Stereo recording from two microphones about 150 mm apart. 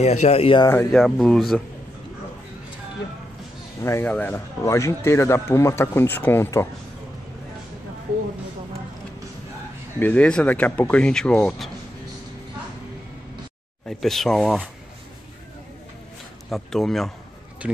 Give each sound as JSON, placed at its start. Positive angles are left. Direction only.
{"t": 0.0, "sound": "speech", "side_deg": 45}
{"t": 0.9, "sound": "speech", "side_deg": 5}
{"t": 3.8, "sound": "a man's voice", "side_deg": 15}
{"t": 9.9, "sound": "a man's voice", "side_deg": 10}
{"t": 13.8, "sound": "speech", "side_deg": 0}
{"t": 16.4, "sound": "speech", "side_deg": 0}